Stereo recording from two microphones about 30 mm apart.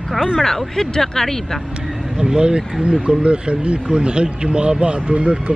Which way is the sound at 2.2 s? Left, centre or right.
Right.